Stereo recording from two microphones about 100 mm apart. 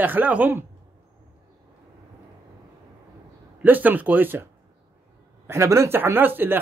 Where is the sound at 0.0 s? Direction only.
15° right (ahead or behind).